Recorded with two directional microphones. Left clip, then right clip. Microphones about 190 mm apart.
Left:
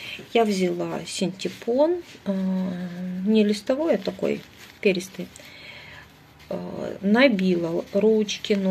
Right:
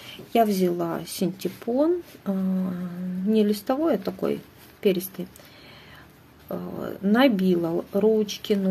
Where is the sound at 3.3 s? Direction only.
10° right (ahead or behind).